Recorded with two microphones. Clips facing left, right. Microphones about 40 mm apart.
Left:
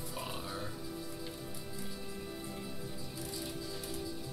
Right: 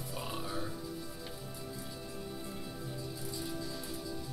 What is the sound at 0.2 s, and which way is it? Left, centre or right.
Music, centre.